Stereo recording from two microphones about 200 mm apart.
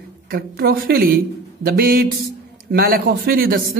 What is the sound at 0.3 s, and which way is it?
A man's voice, 50° right (ahead or behind).